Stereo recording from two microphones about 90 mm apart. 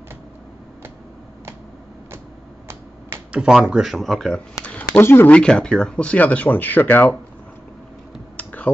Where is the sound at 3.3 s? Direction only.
10° right (ahead or behind).